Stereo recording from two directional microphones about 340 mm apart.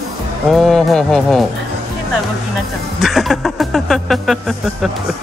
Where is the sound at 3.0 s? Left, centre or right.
Centre.